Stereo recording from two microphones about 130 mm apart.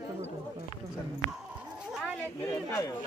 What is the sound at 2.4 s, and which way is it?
Speech, 25° left (ahead or behind).